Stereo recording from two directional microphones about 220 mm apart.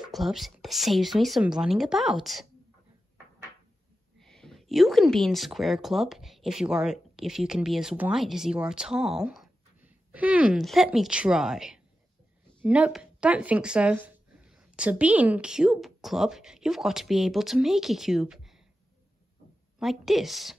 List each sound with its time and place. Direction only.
0.1 s a woman's voice: centre (ahead or behind)
4.2 s a woman's voice: centre (ahead or behind)
19.8 s a woman's voice: centre (ahead or behind)